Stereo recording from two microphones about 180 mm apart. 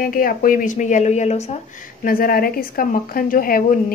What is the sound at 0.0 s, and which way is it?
Speech, 50° left (ahead or behind).